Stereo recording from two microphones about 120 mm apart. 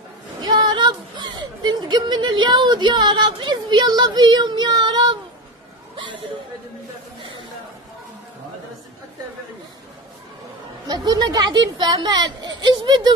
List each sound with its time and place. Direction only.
0.4 s speech: 35° right (ahead or behind)
10.9 s speech: 35° right (ahead or behind)